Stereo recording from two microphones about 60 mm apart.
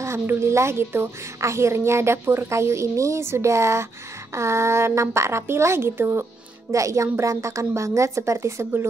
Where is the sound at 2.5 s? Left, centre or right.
Right.